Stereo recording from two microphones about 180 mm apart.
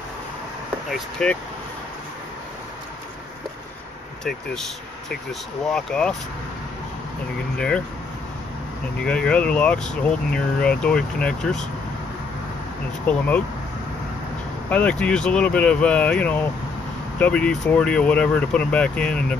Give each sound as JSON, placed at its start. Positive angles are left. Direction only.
{"t": 0.8, "sound": "speech", "side_deg": 0}
{"t": 5.7, "sound": "speech", "side_deg": 5}
{"t": 7.5, "sound": "speech", "side_deg": 5}
{"t": 9.0, "sound": "speech", "side_deg": 5}
{"t": 13.0, "sound": "speech", "side_deg": 5}
{"t": 14.7, "sound": "speech", "side_deg": 5}